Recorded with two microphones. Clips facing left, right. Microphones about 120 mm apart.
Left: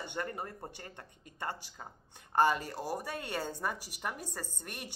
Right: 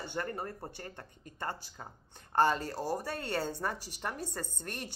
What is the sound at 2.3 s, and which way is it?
A woman's voice, 10° left (ahead or behind).